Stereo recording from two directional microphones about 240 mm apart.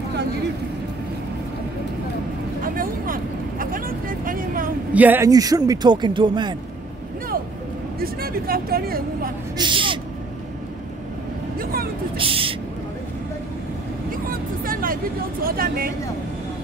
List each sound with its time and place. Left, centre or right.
2.6 s vehicle: right
4.9 s speech: centre
8.0 s speech: right
9.6 s vehicle: right
11.5 s vehicle: right
12.2 s speech: right
14.3 s vehicle: right
15.4 s speech: right